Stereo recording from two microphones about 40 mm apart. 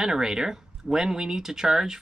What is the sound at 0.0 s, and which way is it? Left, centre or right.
Speech, centre.